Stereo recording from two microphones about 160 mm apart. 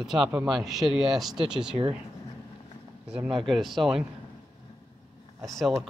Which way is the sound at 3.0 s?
5° right (ahead or behind).